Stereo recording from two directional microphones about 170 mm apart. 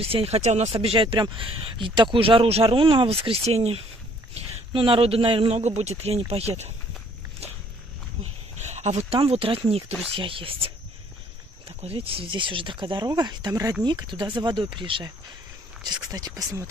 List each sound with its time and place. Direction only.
0.0 s speech: 35° right (ahead or behind)
8.2 s speech: 40° right (ahead or behind)
16.1 s speech: 20° right (ahead or behind)